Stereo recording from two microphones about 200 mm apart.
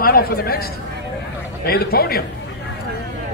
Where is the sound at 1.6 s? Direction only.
50° left (ahead or behind).